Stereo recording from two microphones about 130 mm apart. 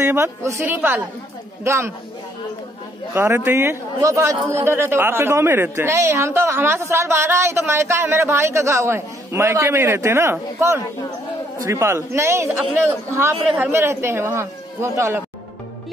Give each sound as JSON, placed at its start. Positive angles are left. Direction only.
{"t": 0.0, "sound": "a woman's voice", "side_deg": -20}
{"t": 3.2, "sound": "a woman's voice", "side_deg": -20}